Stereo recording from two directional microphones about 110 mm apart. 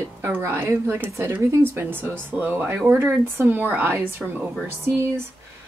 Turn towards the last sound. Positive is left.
turn(degrees=-20)  # may be behind; listen again after turning